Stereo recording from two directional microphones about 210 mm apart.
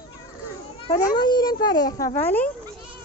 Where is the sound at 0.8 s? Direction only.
25° left (ahead or behind).